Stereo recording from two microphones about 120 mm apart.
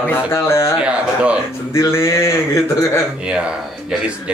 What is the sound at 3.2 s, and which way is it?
Speech, 10° right (ahead or behind).